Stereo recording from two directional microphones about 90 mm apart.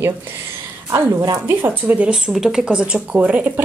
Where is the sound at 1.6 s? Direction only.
15° right (ahead or behind).